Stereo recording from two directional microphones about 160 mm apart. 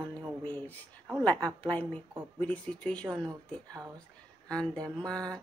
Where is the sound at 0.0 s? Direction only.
10° left (ahead or behind).